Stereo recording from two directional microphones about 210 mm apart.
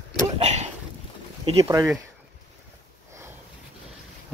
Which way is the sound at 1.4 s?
20° right (ahead or behind).